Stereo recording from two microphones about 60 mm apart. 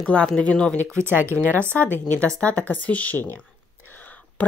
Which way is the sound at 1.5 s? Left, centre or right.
Right.